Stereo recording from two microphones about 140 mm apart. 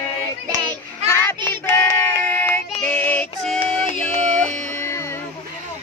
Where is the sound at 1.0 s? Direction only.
10° left (ahead or behind).